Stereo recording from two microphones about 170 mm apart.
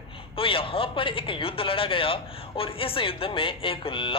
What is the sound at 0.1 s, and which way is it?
A man's voice, 30° left (ahead or behind).